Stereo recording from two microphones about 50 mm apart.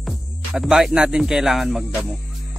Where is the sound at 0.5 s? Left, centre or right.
Centre.